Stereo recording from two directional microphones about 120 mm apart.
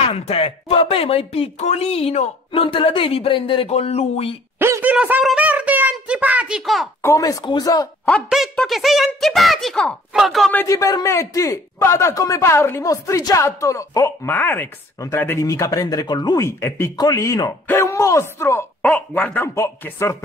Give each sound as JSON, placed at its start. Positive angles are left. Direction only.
{"t": 0.1, "sound": "speech", "side_deg": 50}
{"t": 4.6, "sound": "a sound", "side_deg": -20}
{"t": 4.9, "sound": "speech", "side_deg": -15}
{"t": 5.2, "sound": "a sound", "side_deg": -10}
{"t": 7.0, "sound": "speech", "side_deg": 25}
{"t": 8.3, "sound": "speech", "side_deg": 0}
{"t": 10.7, "sound": "a man's voice", "side_deg": 30}
{"t": 14.3, "sound": "a man's voice", "side_deg": 15}
{"t": 16.4, "sound": "a man's voice", "side_deg": 20}
{"t": 16.9, "sound": "a man's voice", "side_deg": 35}
{"t": 18.8, "sound": "speech", "side_deg": 10}